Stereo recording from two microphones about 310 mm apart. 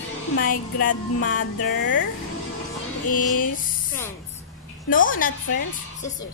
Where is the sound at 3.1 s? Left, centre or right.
Left.